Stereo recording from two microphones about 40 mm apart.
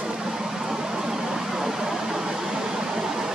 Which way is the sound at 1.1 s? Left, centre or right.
Centre.